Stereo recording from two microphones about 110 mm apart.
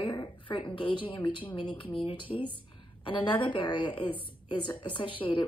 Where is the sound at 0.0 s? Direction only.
45° left (ahead or behind).